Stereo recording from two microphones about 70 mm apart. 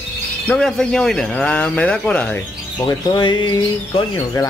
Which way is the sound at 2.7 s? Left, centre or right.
Left.